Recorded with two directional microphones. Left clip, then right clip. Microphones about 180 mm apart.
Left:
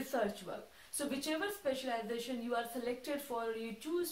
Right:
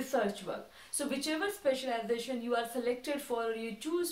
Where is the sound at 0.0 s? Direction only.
15° right (ahead or behind).